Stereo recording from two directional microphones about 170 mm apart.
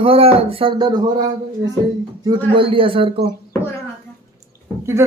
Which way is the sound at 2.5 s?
30° right (ahead or behind).